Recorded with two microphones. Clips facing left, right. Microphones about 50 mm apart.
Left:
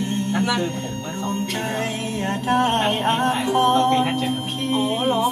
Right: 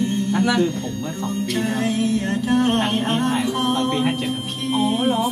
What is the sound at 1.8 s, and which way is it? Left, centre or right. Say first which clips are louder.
Music: right 4 dB; left.